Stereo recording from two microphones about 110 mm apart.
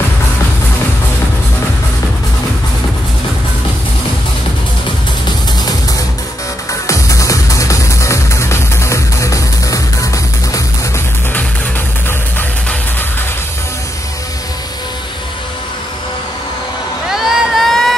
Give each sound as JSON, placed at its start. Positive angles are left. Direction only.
{"t": 6.9, "sound": "music", "side_deg": 30}
{"t": 17.1, "sound": "crowd", "side_deg": -5}